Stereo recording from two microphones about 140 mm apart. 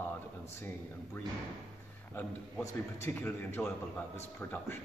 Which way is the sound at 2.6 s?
15° left (ahead or behind).